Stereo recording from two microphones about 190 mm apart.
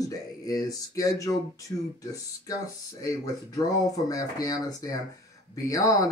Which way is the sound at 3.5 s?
20° left (ahead or behind).